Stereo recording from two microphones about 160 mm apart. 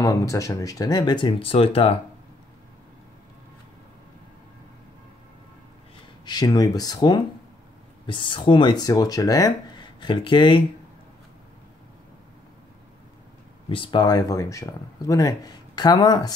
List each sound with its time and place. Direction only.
0.0 s speech: 20° left (ahead or behind); by 2.0 s 35° left (ahead or behind)
6.2 s speech: 25° left (ahead or behind)
13.7 s speech: 30° left (ahead or behind)